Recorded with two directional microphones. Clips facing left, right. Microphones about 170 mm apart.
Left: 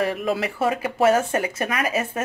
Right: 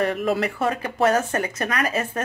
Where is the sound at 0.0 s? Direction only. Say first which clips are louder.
Right 1 dB; centre (ahead or behind).